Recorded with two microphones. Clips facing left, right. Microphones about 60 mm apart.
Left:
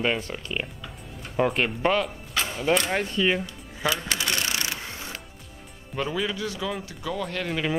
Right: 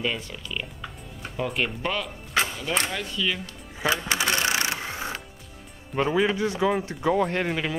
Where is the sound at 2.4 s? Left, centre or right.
Right.